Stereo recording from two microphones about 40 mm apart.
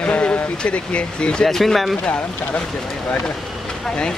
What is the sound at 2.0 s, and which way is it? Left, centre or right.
Speech, left.